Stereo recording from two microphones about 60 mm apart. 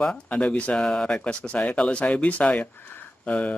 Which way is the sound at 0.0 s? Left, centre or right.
Left.